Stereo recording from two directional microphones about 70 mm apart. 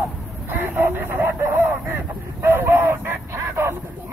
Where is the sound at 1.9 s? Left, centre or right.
Right.